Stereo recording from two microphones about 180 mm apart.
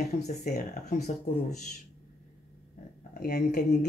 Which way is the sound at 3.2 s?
45° left (ahead or behind).